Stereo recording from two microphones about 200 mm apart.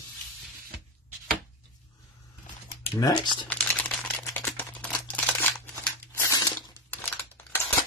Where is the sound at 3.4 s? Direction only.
10° left (ahead or behind).